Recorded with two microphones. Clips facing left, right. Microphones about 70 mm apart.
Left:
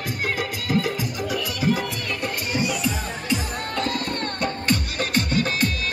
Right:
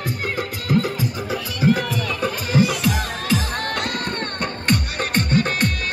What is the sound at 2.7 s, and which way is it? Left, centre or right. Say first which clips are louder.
Music: right 3 dB; right.